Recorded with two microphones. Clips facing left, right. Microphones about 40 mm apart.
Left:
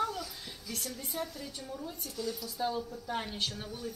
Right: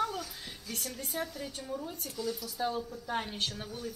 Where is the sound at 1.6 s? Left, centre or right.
Centre.